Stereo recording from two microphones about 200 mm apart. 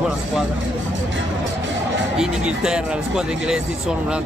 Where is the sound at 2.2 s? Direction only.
5° right (ahead or behind).